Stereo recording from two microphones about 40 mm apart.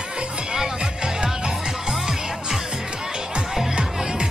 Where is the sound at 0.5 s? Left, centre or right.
Centre.